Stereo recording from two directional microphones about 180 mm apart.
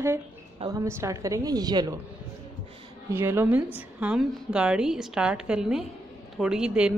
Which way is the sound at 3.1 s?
15° right (ahead or behind).